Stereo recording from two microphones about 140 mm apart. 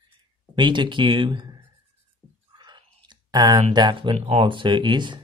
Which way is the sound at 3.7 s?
35° right (ahead or behind).